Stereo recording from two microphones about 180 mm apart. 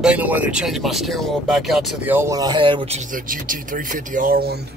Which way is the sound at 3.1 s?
50° right (ahead or behind).